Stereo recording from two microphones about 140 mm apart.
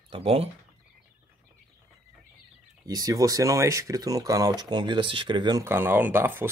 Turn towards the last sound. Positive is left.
turn(degrees=-15)  # may be behind; listen again after turning